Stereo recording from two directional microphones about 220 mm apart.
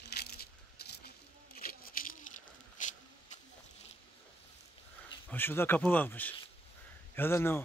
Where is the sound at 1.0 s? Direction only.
40° left (ahead or behind).